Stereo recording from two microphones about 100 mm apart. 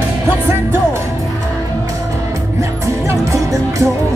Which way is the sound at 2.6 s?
30° right (ahead or behind).